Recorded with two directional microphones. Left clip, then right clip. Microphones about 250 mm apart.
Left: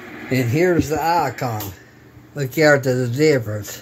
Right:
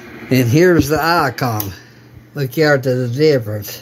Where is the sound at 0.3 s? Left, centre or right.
Right.